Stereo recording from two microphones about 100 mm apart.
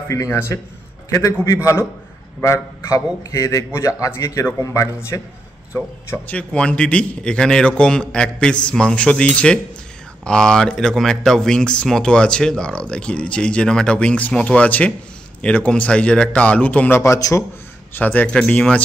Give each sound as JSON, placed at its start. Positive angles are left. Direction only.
{"t": 0.1, "sound": "a man's voice", "side_deg": 30}
{"t": 2.4, "sound": "a man's voice", "side_deg": 30}
{"t": 6.1, "sound": "speech", "side_deg": 15}
{"t": 17.0, "sound": "a man's voice", "side_deg": 30}
{"t": 17.9, "sound": "speech", "side_deg": 15}